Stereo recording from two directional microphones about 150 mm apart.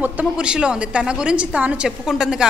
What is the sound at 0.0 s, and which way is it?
A woman's voice, 5° right (ahead or behind).